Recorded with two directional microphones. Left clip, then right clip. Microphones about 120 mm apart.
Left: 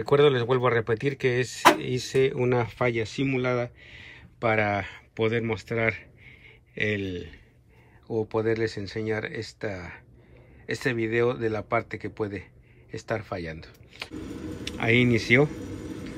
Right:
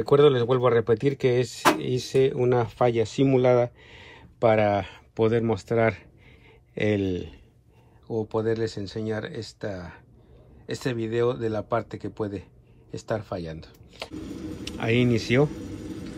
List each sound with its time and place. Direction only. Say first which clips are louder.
0.0 s speech: right 2 dB; 5° right (ahead or behind); by 7.3 s 20° right (ahead or behind)
8.1 s speech: even; 5° right (ahead or behind)
8.9 s speech: left 1 dB; 30° left (ahead or behind)
9.3 s speech: left 1 dB; 5° right (ahead or behind)
9.7 s speech: even; 30° left (ahead or behind)
10.9 s speech: even; centre (ahead or behind)
13.0 s speech: right 1 dB; 30° left (ahead or behind)
14.1 s a sound: even; 15° left (ahead or behind)
14.6 s speech: left 2 dB; 5° right (ahead or behind)
15.4 s a sound: right 1 dB; 20° left (ahead or behind)